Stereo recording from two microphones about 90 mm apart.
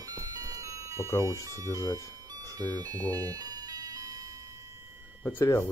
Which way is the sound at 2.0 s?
40° right (ahead or behind).